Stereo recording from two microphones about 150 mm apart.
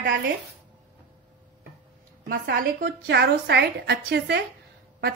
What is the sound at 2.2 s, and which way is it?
Speech, 70° right (ahead or behind).